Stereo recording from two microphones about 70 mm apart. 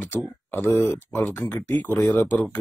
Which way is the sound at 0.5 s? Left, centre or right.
Left.